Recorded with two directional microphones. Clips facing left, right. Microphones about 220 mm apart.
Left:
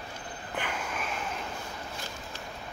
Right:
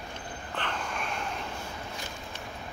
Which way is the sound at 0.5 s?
10° left (ahead or behind).